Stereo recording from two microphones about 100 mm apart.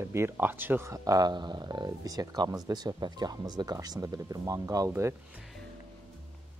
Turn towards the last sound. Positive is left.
turn(degrees=-30)  # may be behind; listen again after turning